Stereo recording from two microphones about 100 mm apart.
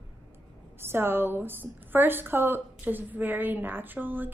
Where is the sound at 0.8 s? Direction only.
25° right (ahead or behind).